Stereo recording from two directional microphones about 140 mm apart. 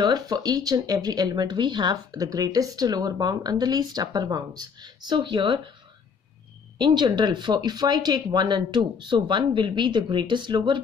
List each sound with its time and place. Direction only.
0.0 s speech: 30° right (ahead or behind)
6.8 s speech: 30° right (ahead or behind)